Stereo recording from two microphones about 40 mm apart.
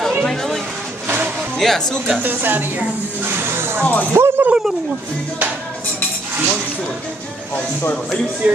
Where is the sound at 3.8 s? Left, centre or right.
Left.